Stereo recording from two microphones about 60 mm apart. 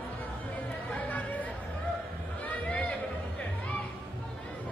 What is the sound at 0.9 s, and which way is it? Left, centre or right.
Chatter, left.